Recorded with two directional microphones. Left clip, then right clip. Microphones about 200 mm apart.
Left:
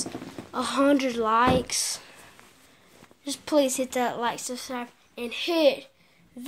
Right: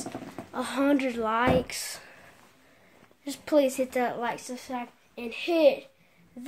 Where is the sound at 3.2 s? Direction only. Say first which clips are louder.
Even; 10° right (ahead or behind).